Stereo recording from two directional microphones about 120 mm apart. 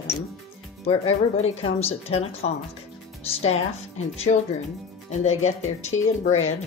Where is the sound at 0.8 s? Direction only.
55° left (ahead or behind).